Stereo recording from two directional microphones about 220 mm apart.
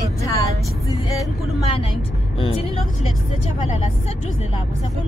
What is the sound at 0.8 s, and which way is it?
Vehicle, 15° left (ahead or behind).